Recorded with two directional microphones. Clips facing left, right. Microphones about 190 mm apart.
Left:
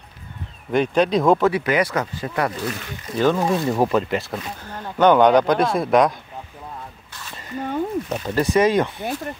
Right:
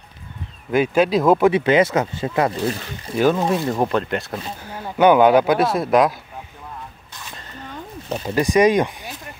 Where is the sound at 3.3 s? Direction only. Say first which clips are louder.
Even; centre (ahead or behind).